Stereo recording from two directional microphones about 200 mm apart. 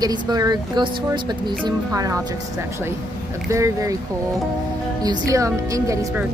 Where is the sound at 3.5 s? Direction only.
15° right (ahead or behind).